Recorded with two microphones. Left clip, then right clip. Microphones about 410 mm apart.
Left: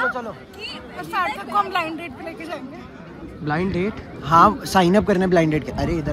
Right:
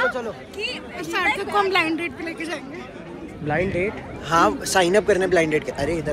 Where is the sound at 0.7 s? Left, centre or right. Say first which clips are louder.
Left 1 dB; centre.